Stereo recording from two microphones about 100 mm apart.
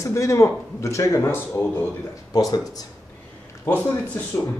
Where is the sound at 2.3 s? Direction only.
35° left (ahead or behind).